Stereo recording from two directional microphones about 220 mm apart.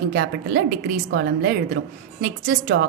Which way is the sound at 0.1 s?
45° right (ahead or behind).